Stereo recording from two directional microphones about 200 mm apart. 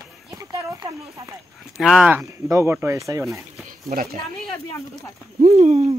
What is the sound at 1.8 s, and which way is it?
Speech, centre (ahead or behind).